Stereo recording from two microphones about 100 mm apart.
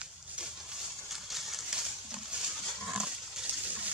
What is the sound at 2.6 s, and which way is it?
Wild animals, 10° right (ahead or behind).